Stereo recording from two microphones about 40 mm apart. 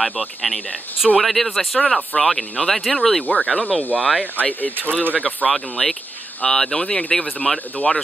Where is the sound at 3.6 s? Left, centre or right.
Left.